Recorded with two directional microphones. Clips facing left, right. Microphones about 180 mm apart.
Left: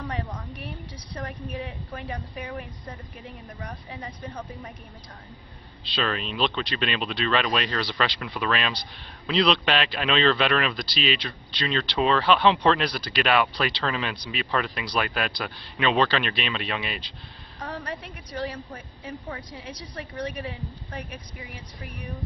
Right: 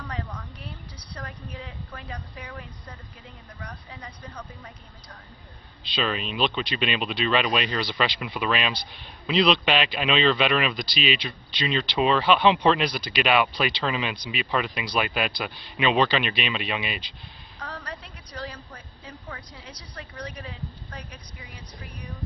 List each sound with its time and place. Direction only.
0.0 s a sound: 20° left (ahead or behind)
1.1 s a woman's voice: 20° left (ahead or behind)
3.6 s a woman's voice: 20° left (ahead or behind)
5.9 s speech: 5° right (ahead or behind)
17.6 s a sound: 20° left (ahead or behind)
19.0 s a woman's voice: 35° left (ahead or behind)
19.5 s a woman's voice: 20° left (ahead or behind)